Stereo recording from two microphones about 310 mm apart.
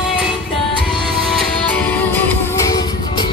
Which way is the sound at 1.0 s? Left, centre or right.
Centre.